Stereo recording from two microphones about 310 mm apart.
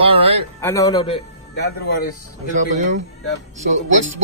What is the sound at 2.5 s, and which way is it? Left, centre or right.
Speech, right.